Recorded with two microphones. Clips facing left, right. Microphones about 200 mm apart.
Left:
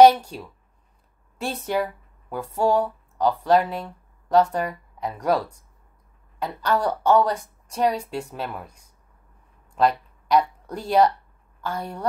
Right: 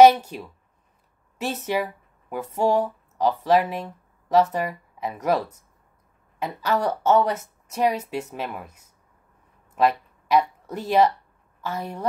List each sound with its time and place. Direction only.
0.0 s speech: 5° right (ahead or behind)
3.6 s speech: 20° right (ahead or behind)
4.3 s speech: 5° right (ahead or behind)